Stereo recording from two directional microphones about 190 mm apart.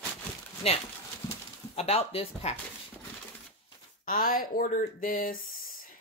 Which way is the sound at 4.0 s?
45° left (ahead or behind).